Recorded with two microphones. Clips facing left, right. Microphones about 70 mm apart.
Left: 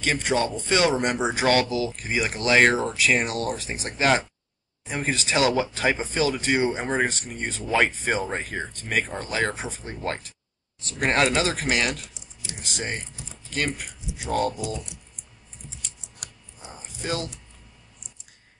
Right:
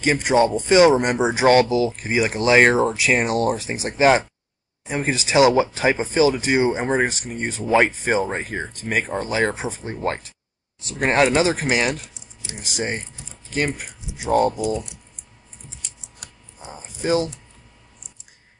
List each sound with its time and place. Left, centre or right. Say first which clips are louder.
0.0 s speech: right 7 dB; centre
16.7 s speech: right 9 dB; centre